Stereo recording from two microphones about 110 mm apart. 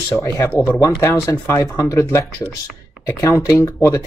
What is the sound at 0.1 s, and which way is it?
Speech, 30° left (ahead or behind).